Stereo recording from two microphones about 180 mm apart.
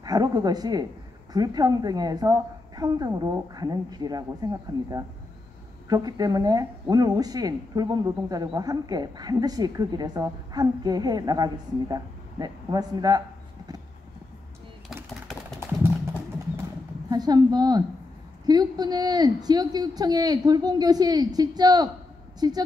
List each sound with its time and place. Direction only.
0.0 s a woman's voice: 20° right (ahead or behind)
17.1 s a woman's voice: 20° right (ahead or behind)